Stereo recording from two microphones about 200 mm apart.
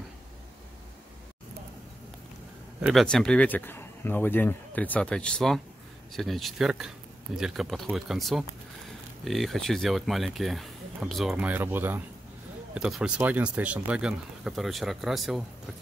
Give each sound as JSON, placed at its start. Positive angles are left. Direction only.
{"t": 2.8, "sound": "speech", "side_deg": 0}